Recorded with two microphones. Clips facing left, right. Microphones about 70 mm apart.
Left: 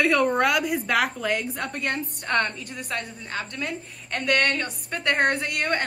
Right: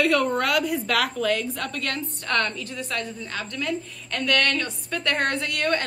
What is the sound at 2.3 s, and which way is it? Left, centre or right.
Speech, left.